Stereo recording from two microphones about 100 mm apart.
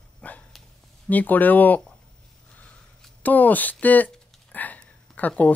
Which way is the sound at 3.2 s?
15° left (ahead or behind).